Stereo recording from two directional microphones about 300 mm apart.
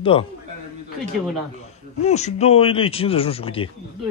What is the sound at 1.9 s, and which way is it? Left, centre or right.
Speech, left.